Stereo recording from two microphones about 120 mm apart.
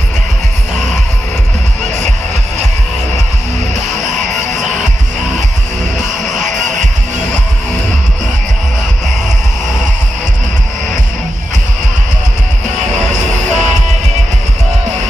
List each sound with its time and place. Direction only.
4.0 s music: 90° right
5.9 s music: 5° right (ahead or behind)
13.1 s music: 85° right